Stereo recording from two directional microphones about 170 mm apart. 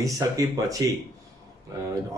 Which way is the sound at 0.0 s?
20° right (ahead or behind).